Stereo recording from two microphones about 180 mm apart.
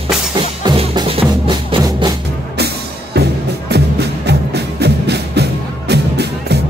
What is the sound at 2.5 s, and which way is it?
Music, 65° right (ahead or behind).